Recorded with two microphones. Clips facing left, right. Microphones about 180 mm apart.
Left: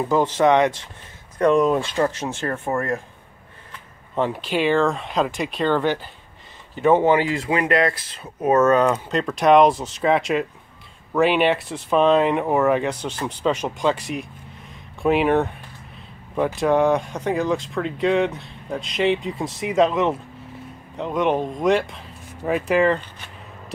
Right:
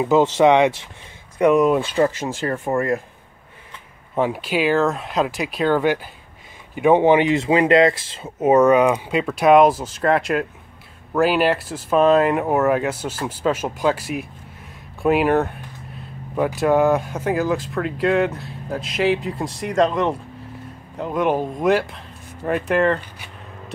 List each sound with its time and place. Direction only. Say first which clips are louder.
0.1 s speech: right 3 dB; 20° right (ahead or behind); by 3.0 s centre (ahead or behind)
4.1 s speech: right 2 dB; 10° right (ahead or behind)